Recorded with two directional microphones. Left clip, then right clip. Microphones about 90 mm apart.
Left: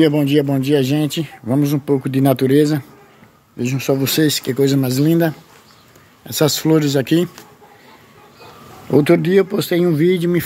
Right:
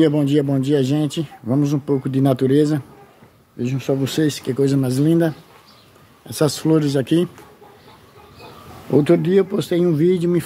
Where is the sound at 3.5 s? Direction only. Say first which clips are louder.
Left 3 dB; 35° left (ahead or behind); by 7.2 s 10° left (ahead or behind).